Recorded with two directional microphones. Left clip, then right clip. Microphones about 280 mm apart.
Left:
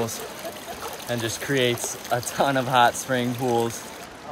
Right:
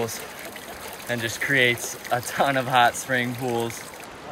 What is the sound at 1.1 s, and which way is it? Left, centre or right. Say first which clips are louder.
Speech: right 3 dB; centre.